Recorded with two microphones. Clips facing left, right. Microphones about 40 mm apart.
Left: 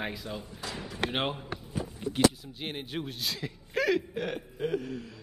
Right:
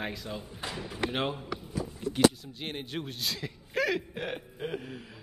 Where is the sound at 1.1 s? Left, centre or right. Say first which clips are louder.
Left 1 dB; left.